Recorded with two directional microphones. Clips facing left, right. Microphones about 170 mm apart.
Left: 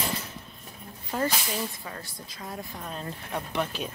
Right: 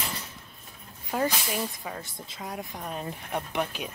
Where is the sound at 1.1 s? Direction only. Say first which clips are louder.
Right 1 dB; 10° right (ahead or behind).